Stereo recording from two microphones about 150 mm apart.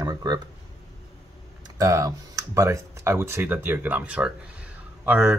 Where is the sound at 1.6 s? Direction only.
20° right (ahead or behind).